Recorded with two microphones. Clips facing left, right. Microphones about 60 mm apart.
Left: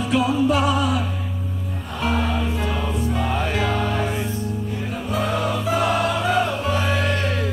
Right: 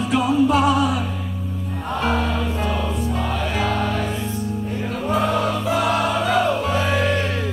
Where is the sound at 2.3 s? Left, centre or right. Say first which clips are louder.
Right 1 dB; centre.